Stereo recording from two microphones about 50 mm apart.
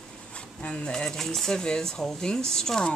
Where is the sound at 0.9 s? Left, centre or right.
Centre.